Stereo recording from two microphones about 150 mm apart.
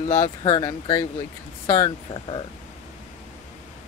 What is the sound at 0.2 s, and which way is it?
Speech, 30° left (ahead or behind).